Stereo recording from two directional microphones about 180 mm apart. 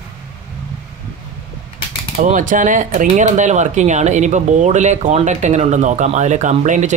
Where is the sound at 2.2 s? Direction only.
45° right (ahead or behind).